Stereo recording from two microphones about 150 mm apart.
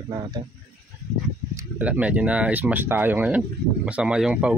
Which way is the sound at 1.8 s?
10° right (ahead or behind).